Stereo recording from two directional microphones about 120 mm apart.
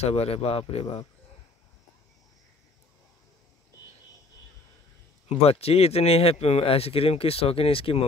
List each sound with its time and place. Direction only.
0.0 s speech: 60° left (ahead or behind)
5.4 s speech: 55° left (ahead or behind)